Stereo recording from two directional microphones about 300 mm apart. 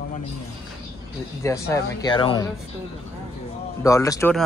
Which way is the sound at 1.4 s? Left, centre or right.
Centre.